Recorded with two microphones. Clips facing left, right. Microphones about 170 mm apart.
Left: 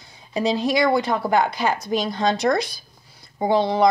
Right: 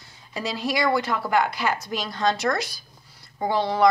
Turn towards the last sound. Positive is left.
turn(degrees=20)  # may be behind; listen again after turning